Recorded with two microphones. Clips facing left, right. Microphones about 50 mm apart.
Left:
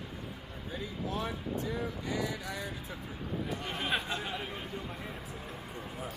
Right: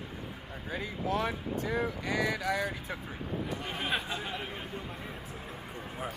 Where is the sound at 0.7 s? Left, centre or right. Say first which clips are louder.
Right 5 dB; right.